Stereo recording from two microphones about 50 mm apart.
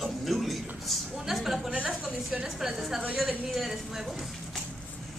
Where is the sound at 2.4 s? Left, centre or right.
Centre.